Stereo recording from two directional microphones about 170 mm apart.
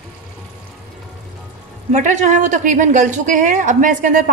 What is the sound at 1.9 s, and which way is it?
A woman's voice, 45° right (ahead or behind).